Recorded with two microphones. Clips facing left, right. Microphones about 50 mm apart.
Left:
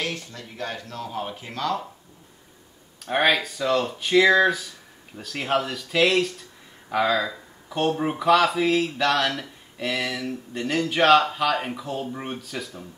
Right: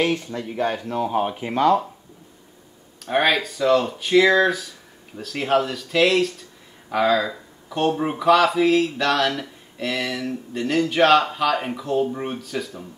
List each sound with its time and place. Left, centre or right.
0.0 s speech: right
3.1 s speech: centre